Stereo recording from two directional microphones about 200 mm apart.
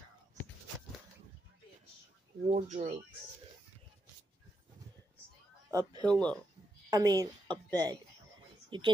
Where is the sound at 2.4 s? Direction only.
35° right (ahead or behind).